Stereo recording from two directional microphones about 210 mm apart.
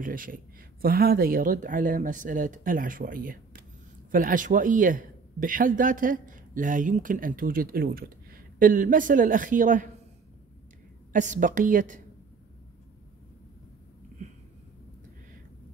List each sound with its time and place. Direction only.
0.0 s a man's voice: 40° right (ahead or behind)
11.1 s a man's voice: 35° right (ahead or behind)